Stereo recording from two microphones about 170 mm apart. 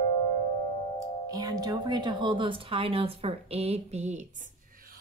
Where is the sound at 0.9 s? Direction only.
20° right (ahead or behind); by 4.3 s 40° right (ahead or behind).